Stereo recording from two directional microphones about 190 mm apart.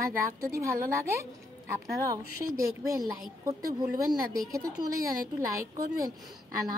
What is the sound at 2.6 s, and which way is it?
Speech, 15° right (ahead or behind).